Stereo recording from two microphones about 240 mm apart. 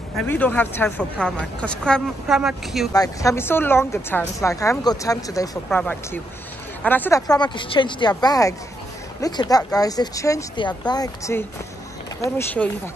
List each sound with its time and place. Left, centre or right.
0.2 s speech: centre
2.9 s a woman's voice: centre